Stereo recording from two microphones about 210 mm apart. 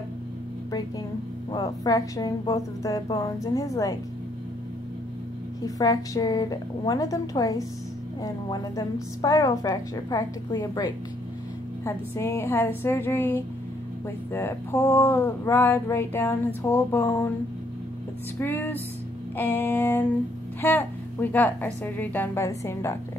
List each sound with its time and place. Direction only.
0.7 s speech: 15° left (ahead or behind)
5.8 s speech: 15° left (ahead or behind)
18.4 s speech: 10° left (ahead or behind)